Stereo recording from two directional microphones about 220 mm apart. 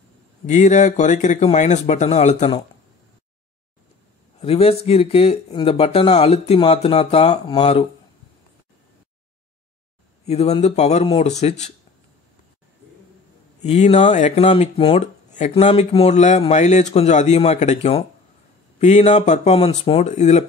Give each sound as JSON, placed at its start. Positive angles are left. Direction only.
{"t": 0.5, "sound": "speech", "side_deg": 35}
{"t": 4.4, "sound": "speech", "side_deg": 25}
{"t": 10.2, "sound": "speech", "side_deg": 30}
{"t": 13.6, "sound": "speech", "side_deg": 30}